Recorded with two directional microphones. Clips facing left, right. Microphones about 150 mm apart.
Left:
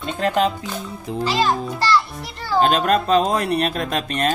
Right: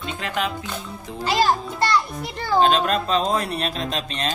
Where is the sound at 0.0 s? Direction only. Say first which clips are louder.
Left 7 dB; 40° left (ahead or behind).